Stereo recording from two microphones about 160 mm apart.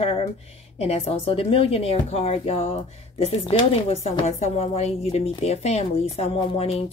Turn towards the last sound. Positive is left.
turn(degrees=40)  # may be behind; listen again after turning